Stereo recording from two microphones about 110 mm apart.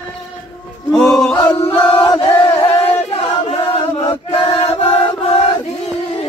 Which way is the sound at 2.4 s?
55° left (ahead or behind).